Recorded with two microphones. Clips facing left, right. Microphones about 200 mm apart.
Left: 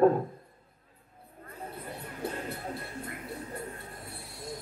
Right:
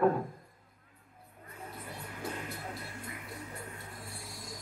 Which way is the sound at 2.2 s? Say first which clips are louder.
Left 4 dB; 60° left (ahead or behind).